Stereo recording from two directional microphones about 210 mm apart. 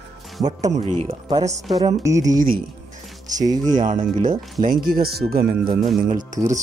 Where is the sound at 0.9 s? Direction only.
35° right (ahead or behind).